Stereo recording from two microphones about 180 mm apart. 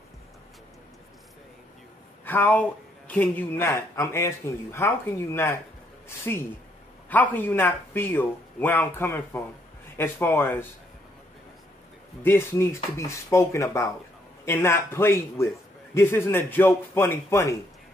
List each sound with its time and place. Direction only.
2.2 s speech: 10° left (ahead or behind)
12.2 s speech: 15° left (ahead or behind)